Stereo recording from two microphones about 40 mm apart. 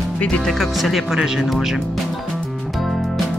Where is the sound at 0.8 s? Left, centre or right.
Centre.